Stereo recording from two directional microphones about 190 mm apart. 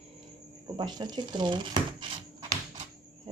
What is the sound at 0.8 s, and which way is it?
Speech, 20° right (ahead or behind).